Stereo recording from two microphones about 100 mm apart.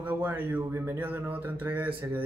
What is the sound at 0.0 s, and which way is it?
Speech, 20° right (ahead or behind).